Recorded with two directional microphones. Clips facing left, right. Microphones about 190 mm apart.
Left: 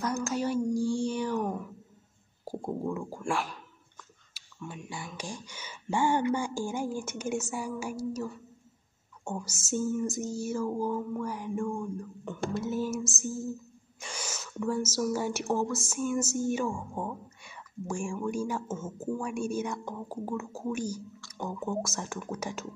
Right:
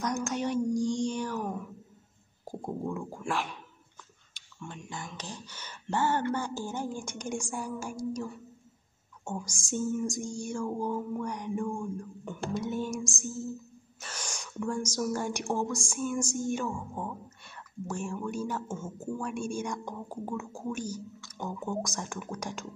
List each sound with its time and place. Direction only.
0.0 s music: centre (ahead or behind)
0.7 s child singing: 15° right (ahead or behind)
1.0 s a sound: 10° left (ahead or behind)
1.4 s speech: centre (ahead or behind)
2.4 s music: 5° left (ahead or behind)
4.3 s a woman's voice: 5° left (ahead or behind)
9.9 s music: 5° left (ahead or behind)
13.9 s a woman's voice: 10° left (ahead or behind)